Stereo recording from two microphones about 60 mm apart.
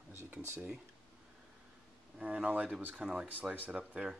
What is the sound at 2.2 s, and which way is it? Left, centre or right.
Speech, right.